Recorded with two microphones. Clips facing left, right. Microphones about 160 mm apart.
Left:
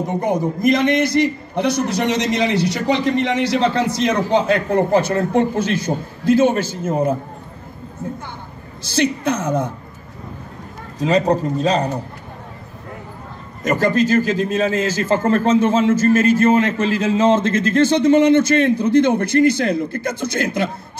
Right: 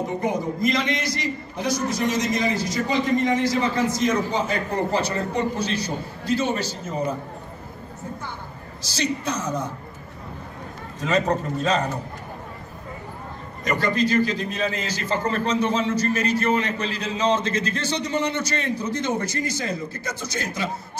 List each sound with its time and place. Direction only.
0.2 s a man's voice: 60° left (ahead or behind)
8.9 s a man's voice: 55° left (ahead or behind)
11.0 s a man's voice: 35° left (ahead or behind)
13.7 s a man's voice: 45° left (ahead or behind)